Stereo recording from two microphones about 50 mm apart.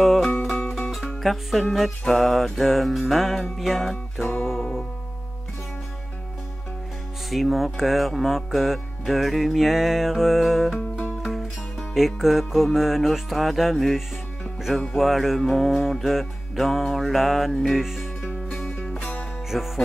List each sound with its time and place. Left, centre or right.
0.0 s music: centre
1.2 s speech: centre
7.2 s speech: centre
11.9 s speech: centre
17.7 s music: centre
18.7 s music: left
19.5 s music: centre